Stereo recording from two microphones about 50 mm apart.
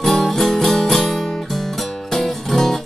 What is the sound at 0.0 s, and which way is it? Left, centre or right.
Music, centre.